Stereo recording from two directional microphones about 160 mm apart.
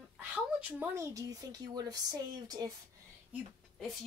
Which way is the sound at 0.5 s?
10° right (ahead or behind).